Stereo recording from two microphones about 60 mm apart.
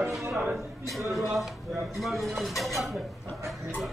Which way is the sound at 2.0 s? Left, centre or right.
Centre.